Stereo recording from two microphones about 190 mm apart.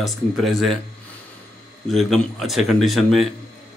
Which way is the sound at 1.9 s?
Centre (ahead or behind).